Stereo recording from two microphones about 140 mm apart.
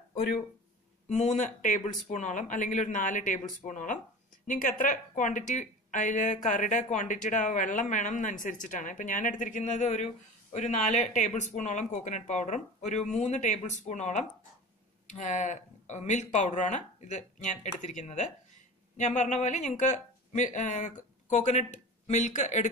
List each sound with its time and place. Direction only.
1.0 s speech: 55° left (ahead or behind)